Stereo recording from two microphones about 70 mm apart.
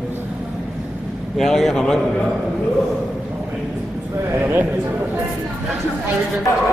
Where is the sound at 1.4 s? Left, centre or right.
Centre.